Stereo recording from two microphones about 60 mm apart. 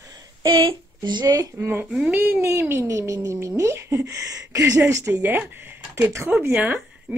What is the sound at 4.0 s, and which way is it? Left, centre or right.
Speech, right.